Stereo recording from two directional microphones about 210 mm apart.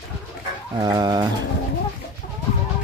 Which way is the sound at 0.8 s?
20° right (ahead or behind).